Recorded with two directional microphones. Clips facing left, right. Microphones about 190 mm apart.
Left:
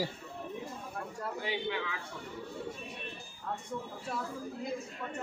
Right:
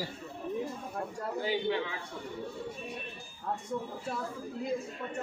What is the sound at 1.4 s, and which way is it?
Speech, 35° right (ahead or behind).